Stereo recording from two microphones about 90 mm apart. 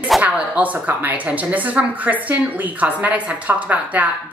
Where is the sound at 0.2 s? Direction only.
15° right (ahead or behind).